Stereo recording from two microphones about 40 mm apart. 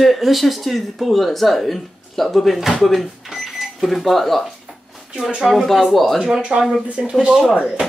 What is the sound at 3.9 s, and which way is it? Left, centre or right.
Speech, centre.